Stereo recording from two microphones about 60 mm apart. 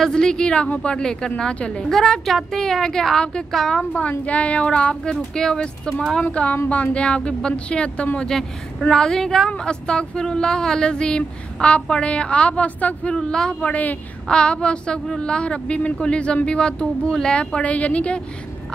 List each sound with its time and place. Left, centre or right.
0.0 s speech: centre
1.9 s speech: centre
6.2 s speech: left
8.2 s speech: centre
13.1 s speech: centre